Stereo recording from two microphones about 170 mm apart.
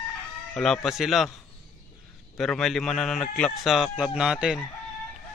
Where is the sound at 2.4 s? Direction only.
Centre (ahead or behind).